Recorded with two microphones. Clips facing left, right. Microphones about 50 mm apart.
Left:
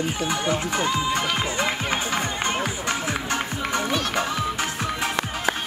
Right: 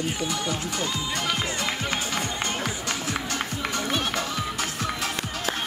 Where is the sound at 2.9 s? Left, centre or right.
Left.